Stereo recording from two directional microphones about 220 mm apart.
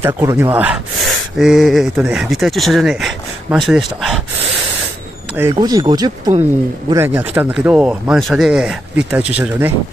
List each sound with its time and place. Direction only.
0.0 s speech: 10° right (ahead or behind)
5.4 s speech: 15° right (ahead or behind)